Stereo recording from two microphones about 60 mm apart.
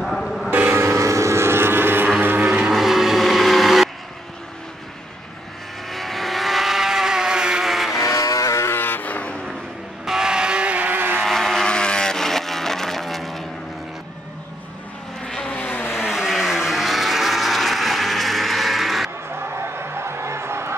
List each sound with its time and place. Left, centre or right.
0.0 s vehicle: centre
0.5 s vehicle: right
2.2 s vehicle: right
2.7 s vehicle: centre
5.9 s vehicle: centre
8.0 s vehicle: left
8.6 s vehicle: left
10.0 s vehicle: centre; by 11.2 s right
11.2 s vehicle: centre
15.2 s vehicle: centre
15.5 s vehicle: left
16.1 s vehicle: centre
19.3 s music: right